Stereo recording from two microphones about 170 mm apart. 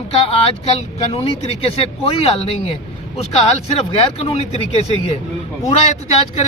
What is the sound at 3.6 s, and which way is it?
Speech, 35° left (ahead or behind).